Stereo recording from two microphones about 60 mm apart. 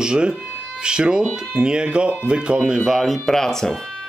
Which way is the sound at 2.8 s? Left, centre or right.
Centre.